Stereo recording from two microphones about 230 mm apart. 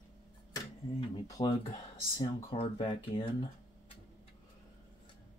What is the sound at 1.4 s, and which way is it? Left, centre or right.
Speech, left.